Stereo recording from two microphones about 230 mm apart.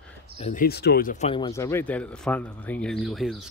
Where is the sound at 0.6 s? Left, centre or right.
Left.